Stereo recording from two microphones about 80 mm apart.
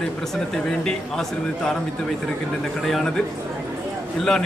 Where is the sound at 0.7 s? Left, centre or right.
Centre.